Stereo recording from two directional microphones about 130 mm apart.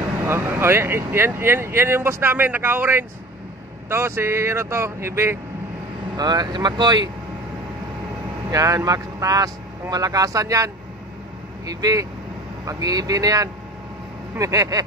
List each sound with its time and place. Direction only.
0.3 s speech: 20° right (ahead or behind)
6.1 s speech: 30° right (ahead or behind)
8.5 s speech: 25° right (ahead or behind)